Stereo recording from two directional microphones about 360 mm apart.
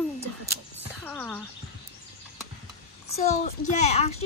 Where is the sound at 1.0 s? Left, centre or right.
Centre.